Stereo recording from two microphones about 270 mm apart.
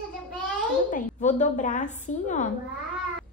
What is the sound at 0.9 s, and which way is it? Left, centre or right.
A woman's voice, left.